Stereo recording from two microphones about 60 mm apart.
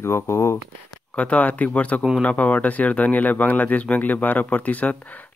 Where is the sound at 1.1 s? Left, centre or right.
Left.